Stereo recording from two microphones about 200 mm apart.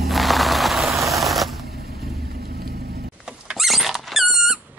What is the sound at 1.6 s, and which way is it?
Vehicle, 50° right (ahead or behind).